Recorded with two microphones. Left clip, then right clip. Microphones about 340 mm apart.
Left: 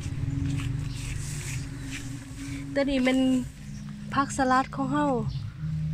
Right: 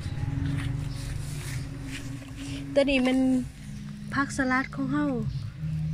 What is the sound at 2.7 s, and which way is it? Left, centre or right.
Speech, centre.